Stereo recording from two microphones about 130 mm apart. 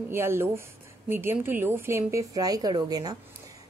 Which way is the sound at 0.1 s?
20° right (ahead or behind).